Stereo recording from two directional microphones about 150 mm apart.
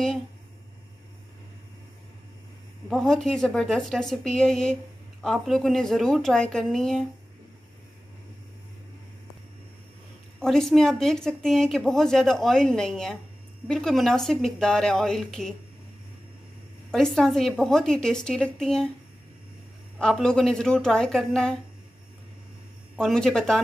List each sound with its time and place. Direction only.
2.9 s speech: 5° left (ahead or behind)
10.4 s speech: 5° left (ahead or behind)
16.9 s speech: 5° left (ahead or behind)
20.0 s speech: 5° left (ahead or behind)
22.9 s speech: 5° left (ahead or behind)